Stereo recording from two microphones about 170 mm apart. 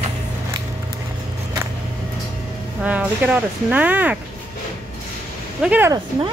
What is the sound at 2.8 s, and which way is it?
Speech, 10° right (ahead or behind).